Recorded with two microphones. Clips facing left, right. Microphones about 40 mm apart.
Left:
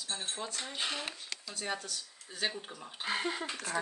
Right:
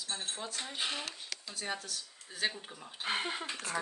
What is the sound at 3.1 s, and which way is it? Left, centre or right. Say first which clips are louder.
Speech: left 1 dB; centre.